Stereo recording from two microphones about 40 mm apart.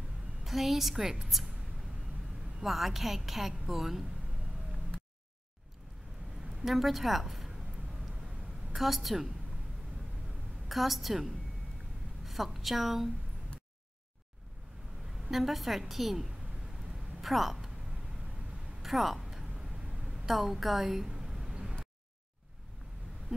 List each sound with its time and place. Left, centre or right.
0.4 s a woman's voice: centre
2.6 s a woman's voice: centre
6.6 s a sound: centre
8.7 s a woman's voice: centre
10.7 s a woman's voice: centre
15.3 s a woman's voice: centre
18.8 s a sound: centre
19.8 s a sound: right
20.2 s a woman's voice: centre